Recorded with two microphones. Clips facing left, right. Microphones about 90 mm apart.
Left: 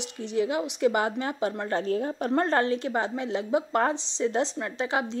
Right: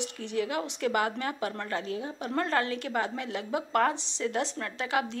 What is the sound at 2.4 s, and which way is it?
A woman's voice, 30° left (ahead or behind).